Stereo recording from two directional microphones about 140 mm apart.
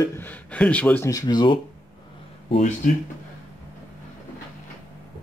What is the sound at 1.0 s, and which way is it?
Speech, 30° left (ahead or behind).